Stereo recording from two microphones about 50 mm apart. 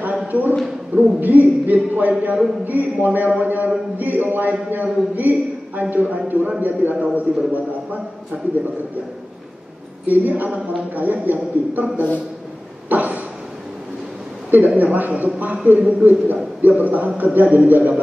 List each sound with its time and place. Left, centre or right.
0.3 s a man's voice: right
10.0 s a man's voice: right
12.9 s a sound: right
14.8 s a man's voice: right